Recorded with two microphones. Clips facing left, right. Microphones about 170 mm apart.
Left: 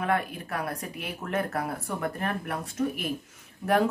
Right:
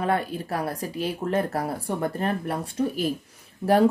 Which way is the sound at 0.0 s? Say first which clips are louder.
Right 3 dB; 30° right (ahead or behind).